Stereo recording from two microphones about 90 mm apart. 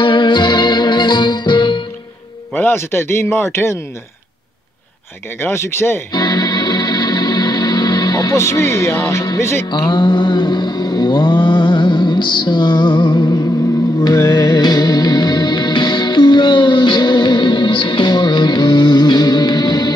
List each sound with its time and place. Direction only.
0.0 s music: 60° left (ahead or behind)
2.5 s a man's voice: 25° left (ahead or behind)
5.4 s a man's voice: 30° left (ahead or behind)
6.1 s music: 45° left (ahead or behind)
8.4 s speech: 30° left (ahead or behind)
9.8 s a sound: 60° left (ahead or behind)
13.9 s music: 45° left (ahead or behind)